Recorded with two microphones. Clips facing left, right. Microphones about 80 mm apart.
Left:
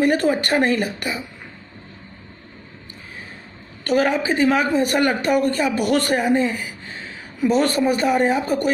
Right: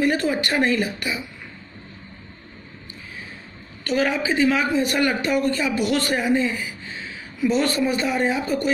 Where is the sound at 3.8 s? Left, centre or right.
Left.